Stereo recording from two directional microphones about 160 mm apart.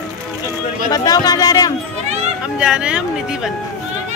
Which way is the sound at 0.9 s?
25° left (ahead or behind).